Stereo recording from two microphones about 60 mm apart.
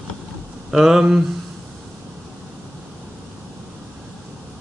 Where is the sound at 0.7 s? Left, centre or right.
Centre.